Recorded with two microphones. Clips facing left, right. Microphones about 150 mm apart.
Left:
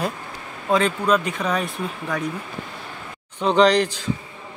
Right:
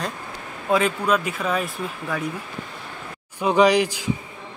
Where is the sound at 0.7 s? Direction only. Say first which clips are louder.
Left 1 dB; 5° right (ahead or behind).